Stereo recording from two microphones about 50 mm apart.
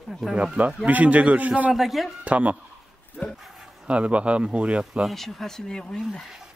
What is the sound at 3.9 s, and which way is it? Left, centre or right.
Speech, right.